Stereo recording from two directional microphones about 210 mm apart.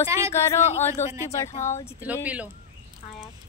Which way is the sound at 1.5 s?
35° left (ahead or behind).